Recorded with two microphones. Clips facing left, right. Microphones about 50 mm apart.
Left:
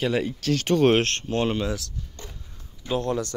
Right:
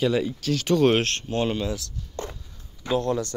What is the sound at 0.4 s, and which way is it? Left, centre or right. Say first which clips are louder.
Speech: left 1 dB; left.